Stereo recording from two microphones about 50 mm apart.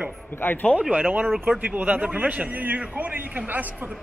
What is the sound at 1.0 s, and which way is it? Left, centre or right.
A man's voice, right.